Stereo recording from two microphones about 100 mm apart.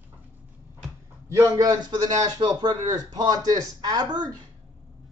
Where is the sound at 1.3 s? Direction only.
30° right (ahead or behind).